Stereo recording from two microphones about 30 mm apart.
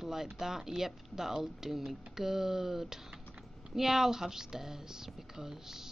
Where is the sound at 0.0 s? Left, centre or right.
Centre.